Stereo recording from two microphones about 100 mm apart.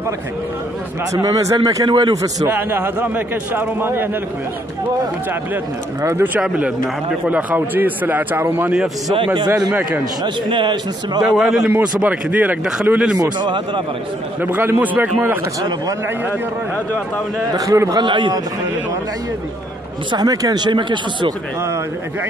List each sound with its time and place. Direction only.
1.1 s a man's voice: 35° right (ahead or behind)
1.9 s speech: 50° right (ahead or behind)
2.5 s a man's voice: 20° right (ahead or behind)
6.0 s a man's voice: 20° right (ahead or behind)
10.2 s speech: 50° right (ahead or behind)
11.3 s a man's voice: 5° right (ahead or behind)
13.2 s speech: 45° right (ahead or behind)
14.4 s a man's voice: 20° right (ahead or behind)
17.6 s a man's voice: 35° right (ahead or behind)
18.0 s speech: 55° right (ahead or behind)
20.1 s speech: 40° right (ahead or behind)